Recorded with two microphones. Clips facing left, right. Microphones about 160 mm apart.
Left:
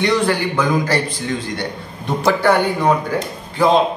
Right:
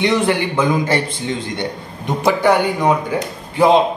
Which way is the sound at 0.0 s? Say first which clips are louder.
Right 1 dB; 20° right (ahead or behind).